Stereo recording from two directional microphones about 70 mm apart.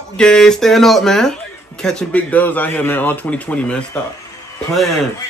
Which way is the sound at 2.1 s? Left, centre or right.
Left.